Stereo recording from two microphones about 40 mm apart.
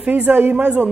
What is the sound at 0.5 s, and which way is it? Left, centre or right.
Music, right.